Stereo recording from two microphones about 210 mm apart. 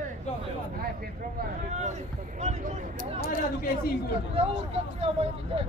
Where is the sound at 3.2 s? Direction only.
45° left (ahead or behind).